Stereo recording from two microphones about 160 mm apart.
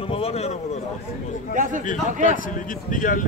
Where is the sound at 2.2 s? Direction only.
60° left (ahead or behind).